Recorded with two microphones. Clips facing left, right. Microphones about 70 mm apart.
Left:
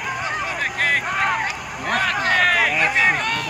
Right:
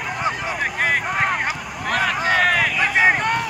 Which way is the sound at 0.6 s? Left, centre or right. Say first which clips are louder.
Right 1 dB; centre.